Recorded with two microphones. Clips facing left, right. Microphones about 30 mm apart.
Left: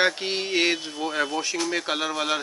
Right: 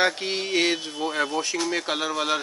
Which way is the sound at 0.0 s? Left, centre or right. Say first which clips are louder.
Even; centre.